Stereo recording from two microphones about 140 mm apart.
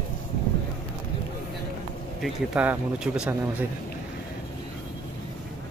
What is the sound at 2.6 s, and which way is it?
Speech, 10° right (ahead or behind).